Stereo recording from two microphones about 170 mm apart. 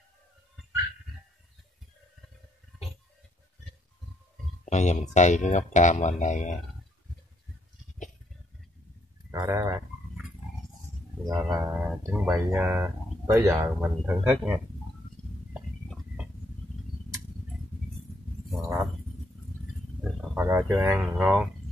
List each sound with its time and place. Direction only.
4.6 s speech: 40° left (ahead or behind)
9.3 s a sound: 15° right (ahead or behind)
11.2 s music: 20° right (ahead or behind)
11.6 s speech: 10° right (ahead or behind)
15.5 s a sound: 5° right (ahead or behind)
20.0 s wild animals: 10° right (ahead or behind)
21.0 s speech: centre (ahead or behind)